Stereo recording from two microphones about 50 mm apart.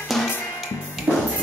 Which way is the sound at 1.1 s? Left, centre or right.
Centre.